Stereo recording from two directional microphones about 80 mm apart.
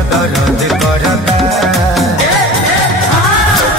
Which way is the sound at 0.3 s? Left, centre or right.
Centre.